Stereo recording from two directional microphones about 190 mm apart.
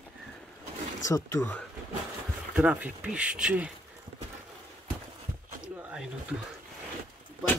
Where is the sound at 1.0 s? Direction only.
15° left (ahead or behind).